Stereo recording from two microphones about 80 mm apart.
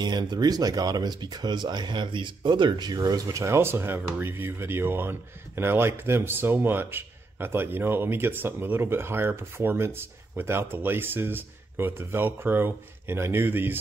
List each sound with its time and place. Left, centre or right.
0.0 s speech: right